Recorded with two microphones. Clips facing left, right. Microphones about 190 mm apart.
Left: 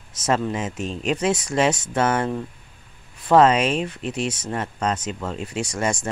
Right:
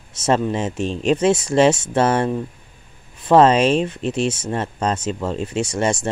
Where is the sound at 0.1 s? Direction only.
30° right (ahead or behind).